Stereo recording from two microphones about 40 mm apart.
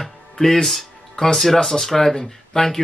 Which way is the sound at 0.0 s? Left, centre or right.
Centre.